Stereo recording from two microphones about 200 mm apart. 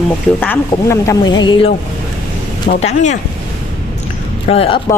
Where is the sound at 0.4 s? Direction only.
10° left (ahead or behind).